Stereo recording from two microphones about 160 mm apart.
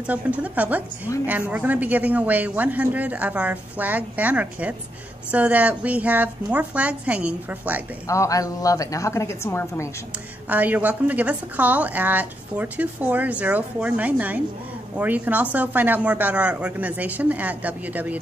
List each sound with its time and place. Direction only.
0.0 s a woman's voice: 10° right (ahead or behind)
8.1 s a woman's voice: 20° left (ahead or behind)
10.5 s a woman's voice: 10° right (ahead or behind)